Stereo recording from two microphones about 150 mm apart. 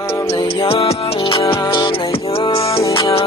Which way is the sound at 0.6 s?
40° left (ahead or behind).